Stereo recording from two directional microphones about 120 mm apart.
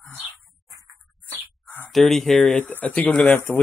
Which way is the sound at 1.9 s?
Centre (ahead or behind).